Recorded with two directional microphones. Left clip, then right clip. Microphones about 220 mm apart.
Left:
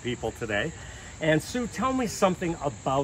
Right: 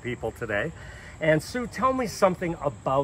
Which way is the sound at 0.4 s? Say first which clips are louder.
Right 1 dB; 35° left (ahead or behind).